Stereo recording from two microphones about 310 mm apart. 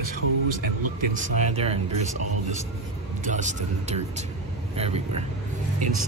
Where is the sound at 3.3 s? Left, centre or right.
Right.